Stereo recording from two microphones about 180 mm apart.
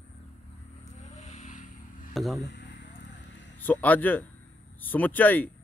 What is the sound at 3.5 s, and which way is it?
Speech, 10° left (ahead or behind).